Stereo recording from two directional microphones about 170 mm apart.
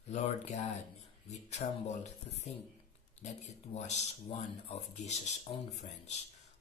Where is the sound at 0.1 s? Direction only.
45° left (ahead or behind).